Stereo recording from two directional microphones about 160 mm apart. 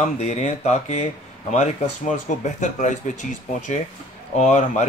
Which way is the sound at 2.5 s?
50° left (ahead or behind).